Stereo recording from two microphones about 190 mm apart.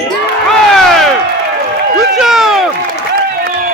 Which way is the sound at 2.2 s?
Centre (ahead or behind).